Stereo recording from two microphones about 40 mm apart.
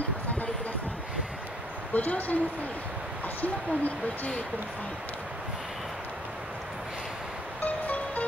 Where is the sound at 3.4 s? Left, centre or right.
Left.